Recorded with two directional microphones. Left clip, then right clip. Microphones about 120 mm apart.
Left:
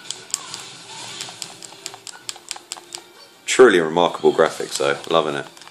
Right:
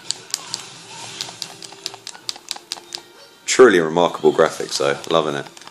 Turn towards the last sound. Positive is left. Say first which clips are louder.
# even
turn(degrees=-5)  # may be behind; listen again after turning